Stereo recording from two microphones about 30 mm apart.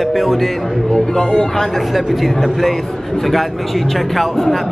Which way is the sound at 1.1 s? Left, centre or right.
Centre.